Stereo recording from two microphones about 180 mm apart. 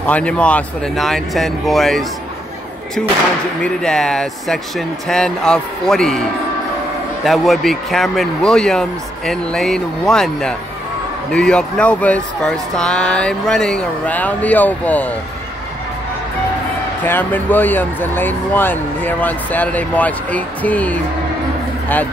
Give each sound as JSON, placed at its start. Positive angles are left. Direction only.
{"t": 0.0, "sound": "speech", "side_deg": 5}
{"t": 3.6, "sound": "speech", "side_deg": 5}
{"t": 7.2, "sound": "speech", "side_deg": 0}
{"t": 17.0, "sound": "speech", "side_deg": 10}